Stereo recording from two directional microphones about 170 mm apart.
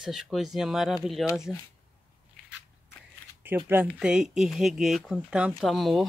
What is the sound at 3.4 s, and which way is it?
Speech, 10° right (ahead or behind).